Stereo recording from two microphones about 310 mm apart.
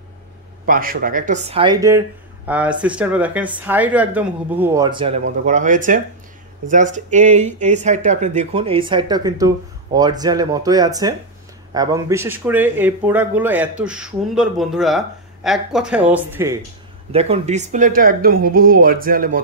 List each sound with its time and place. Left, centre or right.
0.7 s speech: right; by 16.5 s centre
17.1 s speech: centre